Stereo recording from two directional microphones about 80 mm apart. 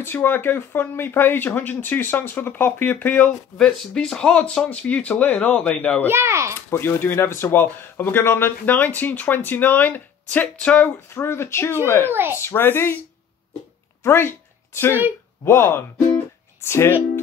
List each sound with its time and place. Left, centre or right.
0.0 s speech: left
3.5 s speech: centre
6.0 s speech: right
6.7 s speech: left
11.1 s speech: left
12.1 s speech: right
12.4 s speech: left
14.0 s speech: left
15.4 s speech: left